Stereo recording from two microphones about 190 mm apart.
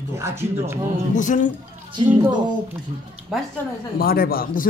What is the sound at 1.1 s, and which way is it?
Speech, 40° left (ahead or behind).